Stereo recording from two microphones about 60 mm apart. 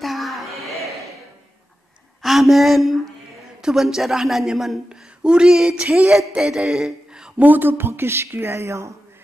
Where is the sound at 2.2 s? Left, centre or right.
Centre.